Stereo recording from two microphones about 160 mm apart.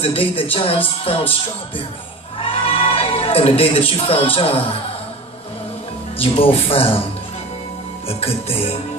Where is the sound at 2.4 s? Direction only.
35° left (ahead or behind).